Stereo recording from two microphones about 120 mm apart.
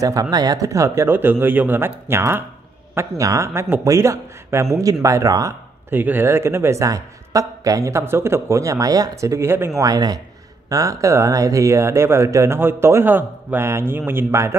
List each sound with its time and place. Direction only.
0.0 s speech: 30° right (ahead or behind)